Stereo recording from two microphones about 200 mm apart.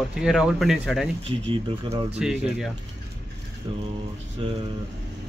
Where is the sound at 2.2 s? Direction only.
5° right (ahead or behind).